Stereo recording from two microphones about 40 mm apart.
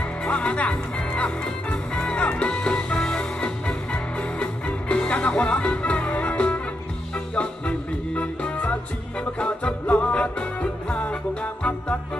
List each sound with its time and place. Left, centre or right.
0.2 s music: left
9.4 s music: left